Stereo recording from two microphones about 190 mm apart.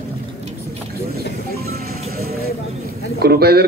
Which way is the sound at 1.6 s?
55° right (ahead or behind).